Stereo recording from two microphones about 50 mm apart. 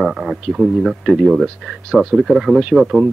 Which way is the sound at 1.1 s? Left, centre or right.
Centre.